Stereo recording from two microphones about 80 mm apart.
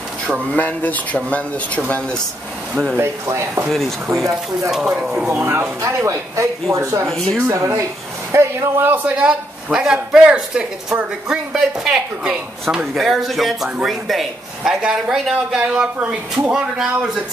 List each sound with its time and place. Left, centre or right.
0.5 s speech: left
3.0 s speech: right
4.6 s a man's voice: centre
5.3 s speech: right
9.0 s a man's voice: centre
16.5 s a man's voice: centre